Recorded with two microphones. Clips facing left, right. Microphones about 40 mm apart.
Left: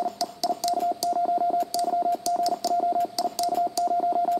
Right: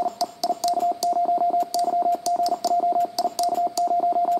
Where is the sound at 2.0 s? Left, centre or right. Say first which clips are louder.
Right 3 dB; centre.